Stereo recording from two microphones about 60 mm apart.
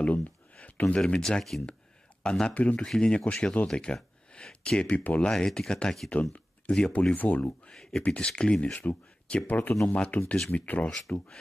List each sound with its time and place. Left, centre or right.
0.0 s a sound: left
1.0 s speech: centre
2.5 s speech: left
2.8 s speech: centre; by 5.2 s left
5.2 s speech: centre
7.6 s speech: centre
8.0 s speech: centre
8.8 s speech: left
10.9 s speech: centre